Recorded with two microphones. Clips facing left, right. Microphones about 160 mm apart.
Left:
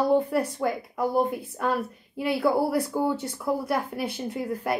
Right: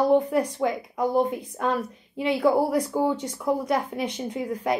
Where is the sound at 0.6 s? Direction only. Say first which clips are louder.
Right 2 dB; 5° left (ahead or behind).